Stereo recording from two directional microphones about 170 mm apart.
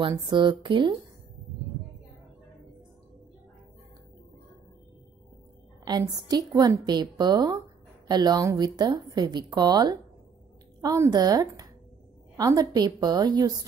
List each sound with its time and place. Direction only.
0.2 s a woman's voice: 30° right (ahead or behind)
5.9 s a woman's voice: 25° right (ahead or behind)